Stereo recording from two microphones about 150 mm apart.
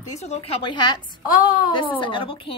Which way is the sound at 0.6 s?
30° left (ahead or behind).